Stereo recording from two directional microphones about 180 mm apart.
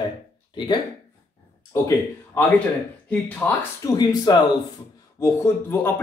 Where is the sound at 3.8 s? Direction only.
20° left (ahead or behind).